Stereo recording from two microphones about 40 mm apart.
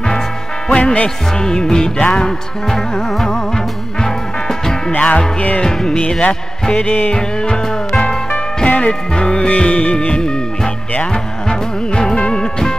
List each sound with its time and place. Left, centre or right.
0.7 s music: left
5.0 s music: left
5.6 s speech: centre
6.7 s music: left
7.1 s music: left
8.6 s music: left
9.1 s music: left
9.5 s music: left
10.0 s music: left